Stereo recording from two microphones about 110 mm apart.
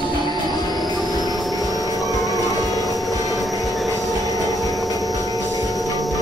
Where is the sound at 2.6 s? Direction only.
30° left (ahead or behind).